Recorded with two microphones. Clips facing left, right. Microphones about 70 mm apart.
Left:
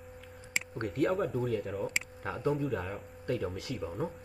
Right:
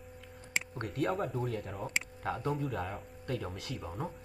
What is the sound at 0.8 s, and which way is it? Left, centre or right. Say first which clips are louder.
Speech: left 5 dB; left.